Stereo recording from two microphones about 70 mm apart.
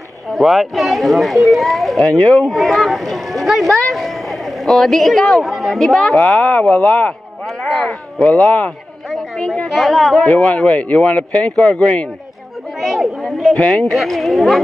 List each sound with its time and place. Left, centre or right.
0.3 s speech: centre
2.1 s speech: centre
2.4 s speech: centre; by 7.2 s left
7.6 s speech: centre
8.2 s speech: centre
9.7 s speech: centre
10.2 s speech: centre
12.8 s chatter: centre
13.6 s speech: centre
13.9 s speech: centre